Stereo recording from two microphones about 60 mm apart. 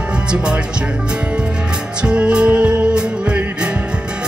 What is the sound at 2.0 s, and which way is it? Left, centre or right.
Music, centre.